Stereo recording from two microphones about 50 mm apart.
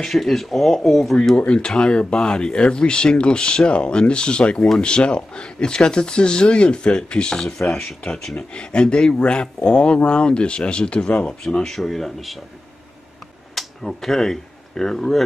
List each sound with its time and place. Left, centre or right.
0.0 s speech: centre
4.6 s speech: centre
4.8 s speech: centre
8.5 s speech: left
11.2 s speech: centre
13.6 s speech: centre